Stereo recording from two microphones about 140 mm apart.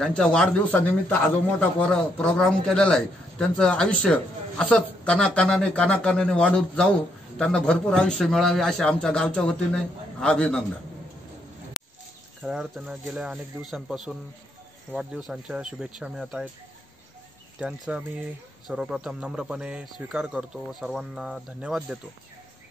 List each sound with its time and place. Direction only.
0.0 s a man's voice: 5° left (ahead or behind)
12.4 s speech: centre (ahead or behind)
17.6 s speech: 10° right (ahead or behind)